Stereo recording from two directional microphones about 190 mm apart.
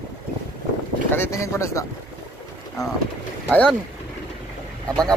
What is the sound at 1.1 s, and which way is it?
Speech, 15° left (ahead or behind).